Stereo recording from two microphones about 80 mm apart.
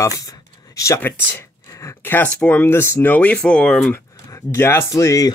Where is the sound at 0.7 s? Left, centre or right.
Left.